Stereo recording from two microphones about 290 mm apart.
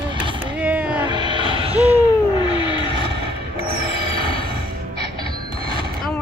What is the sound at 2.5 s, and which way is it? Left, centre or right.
Vehicle, centre.